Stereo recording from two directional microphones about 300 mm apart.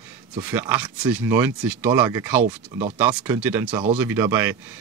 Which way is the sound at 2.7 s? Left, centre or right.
Right.